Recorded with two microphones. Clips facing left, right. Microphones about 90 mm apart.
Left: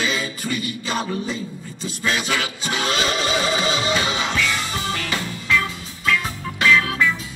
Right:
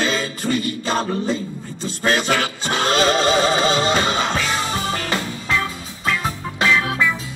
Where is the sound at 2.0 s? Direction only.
40° right (ahead or behind).